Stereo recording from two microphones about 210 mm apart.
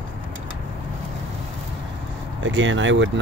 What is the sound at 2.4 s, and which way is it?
Speech, 65° right (ahead or behind).